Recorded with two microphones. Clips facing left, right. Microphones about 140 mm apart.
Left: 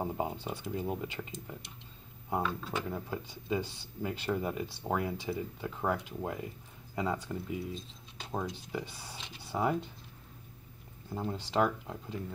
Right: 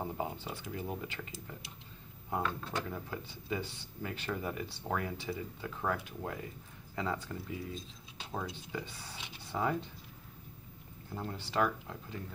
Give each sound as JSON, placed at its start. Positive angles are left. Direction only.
{"t": 0.0, "sound": "a sound", "side_deg": 15}
{"t": 0.7, "sound": "speech", "side_deg": 15}
{"t": 2.2, "sound": "speech", "side_deg": 15}
{"t": 11.1, "sound": "speech", "side_deg": 15}